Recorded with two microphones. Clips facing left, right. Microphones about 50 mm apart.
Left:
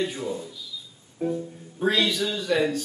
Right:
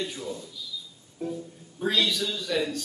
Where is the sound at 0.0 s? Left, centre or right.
Left.